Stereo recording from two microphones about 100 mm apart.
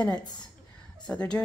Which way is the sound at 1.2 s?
10° left (ahead or behind).